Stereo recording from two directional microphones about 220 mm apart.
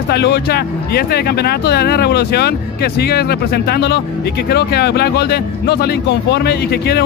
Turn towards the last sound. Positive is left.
turn(degrees=45)  # may be behind; listen again after turning